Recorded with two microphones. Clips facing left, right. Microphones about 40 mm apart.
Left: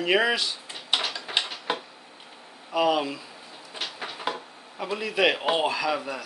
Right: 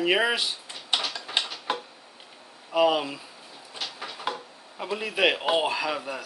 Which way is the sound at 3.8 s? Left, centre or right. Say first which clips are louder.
Left 1 dB; left.